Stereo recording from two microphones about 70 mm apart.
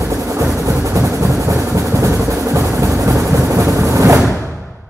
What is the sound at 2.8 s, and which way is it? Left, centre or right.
Vehicle, right.